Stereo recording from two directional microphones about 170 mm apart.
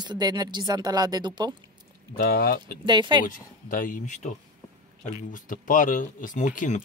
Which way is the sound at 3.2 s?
50° left (ahead or behind).